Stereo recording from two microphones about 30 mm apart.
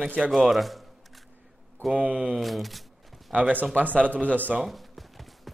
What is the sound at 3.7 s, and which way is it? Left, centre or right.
Speech, right.